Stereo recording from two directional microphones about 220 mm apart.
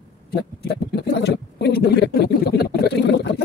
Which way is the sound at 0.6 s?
50° left (ahead or behind).